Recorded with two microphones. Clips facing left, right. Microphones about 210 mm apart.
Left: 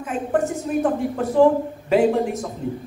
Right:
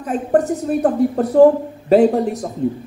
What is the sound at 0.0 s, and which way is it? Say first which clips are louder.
A woman's voice: right 5 dB; 40° right (ahead or behind).